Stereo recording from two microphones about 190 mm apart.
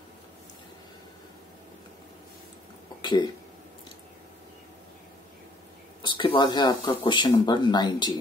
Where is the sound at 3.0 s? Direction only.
25° left (ahead or behind).